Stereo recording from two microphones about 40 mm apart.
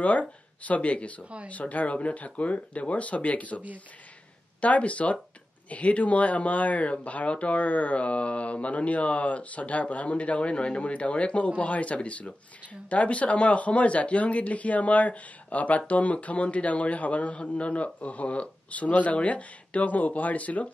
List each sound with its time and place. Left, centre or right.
0.0 s speech: left